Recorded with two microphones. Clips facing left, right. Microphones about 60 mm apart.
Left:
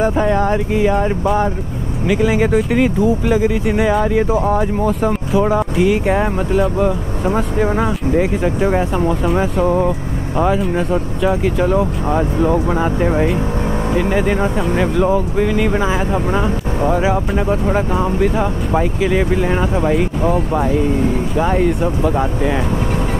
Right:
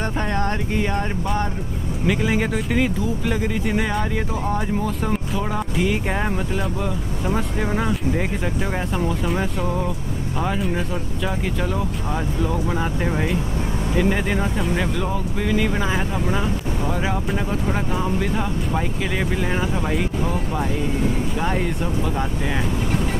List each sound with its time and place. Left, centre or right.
0.0 s speech: centre
8.5 s speech: centre
9.2 s speech: centre
9.7 s speech: left
10.5 s speech: centre
11.7 s speech: left
18.2 s speech: centre
22.0 s speech: centre